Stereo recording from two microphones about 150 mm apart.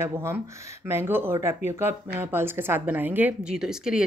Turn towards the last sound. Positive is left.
turn(degrees=-5)  # may be behind; listen again after turning